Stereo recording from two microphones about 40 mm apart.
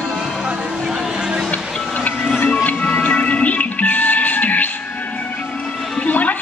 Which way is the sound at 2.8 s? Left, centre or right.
Left.